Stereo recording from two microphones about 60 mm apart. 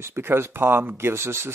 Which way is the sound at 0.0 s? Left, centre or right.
Right.